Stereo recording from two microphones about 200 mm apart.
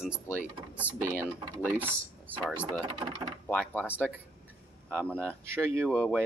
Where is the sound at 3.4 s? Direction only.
5° left (ahead or behind).